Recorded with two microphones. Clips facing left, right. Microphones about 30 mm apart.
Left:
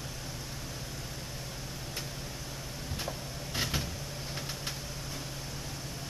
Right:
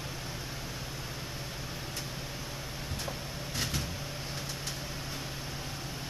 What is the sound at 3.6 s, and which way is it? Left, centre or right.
Vehicle, centre.